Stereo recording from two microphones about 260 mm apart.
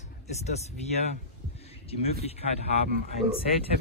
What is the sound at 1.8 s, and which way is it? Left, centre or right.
Speech, left.